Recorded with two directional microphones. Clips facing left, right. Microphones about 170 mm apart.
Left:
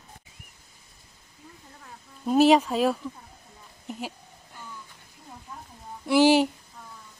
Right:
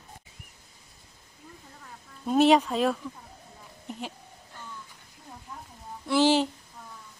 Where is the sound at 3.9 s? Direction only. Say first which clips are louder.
Left 2 dB; 5° left (ahead or behind).